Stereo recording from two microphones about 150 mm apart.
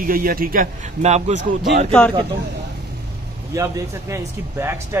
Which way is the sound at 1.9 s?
10° left (ahead or behind).